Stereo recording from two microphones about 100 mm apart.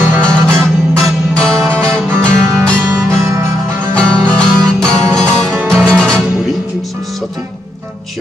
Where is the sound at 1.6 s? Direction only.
20° right (ahead or behind).